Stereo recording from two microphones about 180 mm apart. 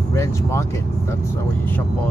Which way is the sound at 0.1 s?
15° left (ahead or behind).